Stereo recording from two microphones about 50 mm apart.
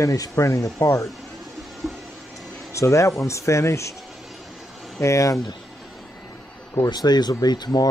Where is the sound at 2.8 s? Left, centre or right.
Left.